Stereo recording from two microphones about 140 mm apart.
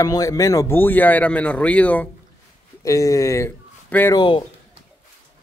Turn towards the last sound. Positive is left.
turn(degrees=35)  # may be behind; listen again after turning